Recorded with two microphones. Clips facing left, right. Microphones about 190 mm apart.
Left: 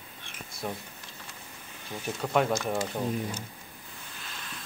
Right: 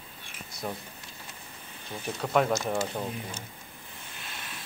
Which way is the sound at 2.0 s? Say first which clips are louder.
Right 1 dB; centre (ahead or behind).